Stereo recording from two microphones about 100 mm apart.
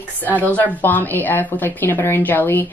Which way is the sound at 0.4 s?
15° left (ahead or behind).